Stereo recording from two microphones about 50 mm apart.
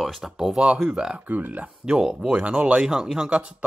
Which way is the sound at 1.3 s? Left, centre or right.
Right.